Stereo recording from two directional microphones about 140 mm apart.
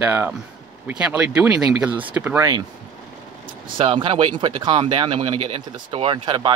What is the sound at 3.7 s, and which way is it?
Speech, 40° right (ahead or behind).